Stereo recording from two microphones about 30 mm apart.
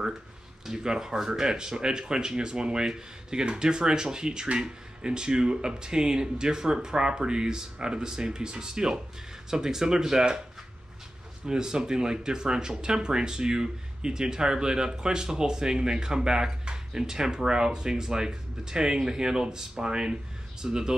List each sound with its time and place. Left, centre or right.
0.7 s speech: right
1.5 s speech: right
11.4 s speech: right